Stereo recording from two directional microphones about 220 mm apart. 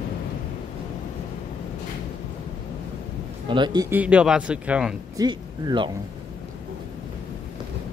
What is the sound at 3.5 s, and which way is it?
A man's voice, 20° right (ahead or behind).